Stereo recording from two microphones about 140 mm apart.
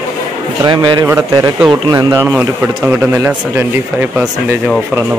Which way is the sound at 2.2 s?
10° right (ahead or behind).